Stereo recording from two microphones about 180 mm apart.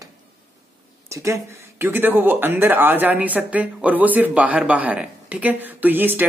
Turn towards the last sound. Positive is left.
turn(degrees=-10)  # may be behind; listen again after turning